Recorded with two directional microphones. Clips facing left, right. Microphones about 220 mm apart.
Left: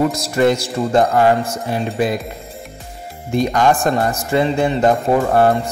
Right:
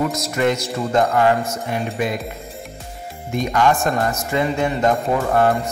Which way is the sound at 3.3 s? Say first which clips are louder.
Left 3 dB; 35° left (ahead or behind).